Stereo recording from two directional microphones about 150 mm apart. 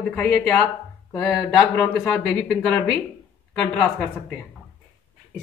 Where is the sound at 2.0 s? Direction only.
Centre (ahead or behind).